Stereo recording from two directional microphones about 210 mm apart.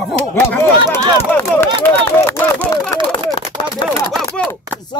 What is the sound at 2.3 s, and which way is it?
Speech, 10° left (ahead or behind).